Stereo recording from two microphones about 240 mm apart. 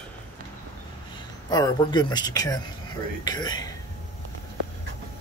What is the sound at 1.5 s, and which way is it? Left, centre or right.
Speech, centre.